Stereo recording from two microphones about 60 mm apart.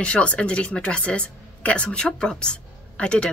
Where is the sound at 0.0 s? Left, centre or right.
Centre.